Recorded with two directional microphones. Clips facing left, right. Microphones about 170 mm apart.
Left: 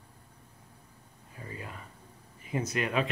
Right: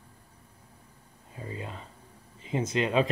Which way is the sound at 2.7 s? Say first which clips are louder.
Right 5 dB; 25° right (ahead or behind).